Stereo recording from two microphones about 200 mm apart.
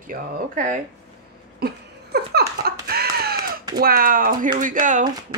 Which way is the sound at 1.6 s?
50° right (ahead or behind).